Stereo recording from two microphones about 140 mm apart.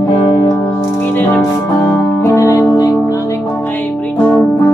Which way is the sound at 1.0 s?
15° left (ahead or behind).